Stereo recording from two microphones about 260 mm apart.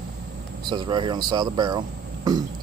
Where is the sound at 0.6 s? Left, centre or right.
Centre.